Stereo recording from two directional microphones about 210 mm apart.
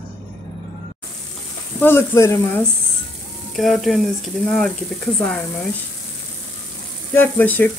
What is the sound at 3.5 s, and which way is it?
Speech, centre (ahead or behind).